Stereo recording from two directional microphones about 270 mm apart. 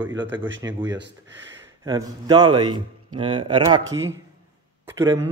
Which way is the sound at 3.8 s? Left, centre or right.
Right.